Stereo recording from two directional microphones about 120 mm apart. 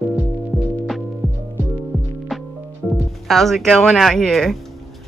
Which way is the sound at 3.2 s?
Centre (ahead or behind).